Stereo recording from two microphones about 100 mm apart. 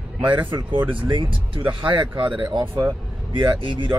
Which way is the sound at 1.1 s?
55° right (ahead or behind).